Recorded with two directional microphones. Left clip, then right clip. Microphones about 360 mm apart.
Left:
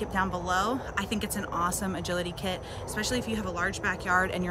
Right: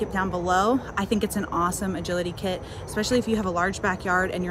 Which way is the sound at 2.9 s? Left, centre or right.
Centre.